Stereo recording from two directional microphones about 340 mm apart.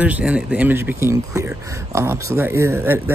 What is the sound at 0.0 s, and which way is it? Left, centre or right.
Speech, centre.